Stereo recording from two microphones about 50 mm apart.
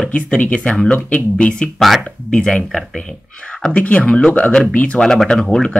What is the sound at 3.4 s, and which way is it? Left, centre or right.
Speech, left.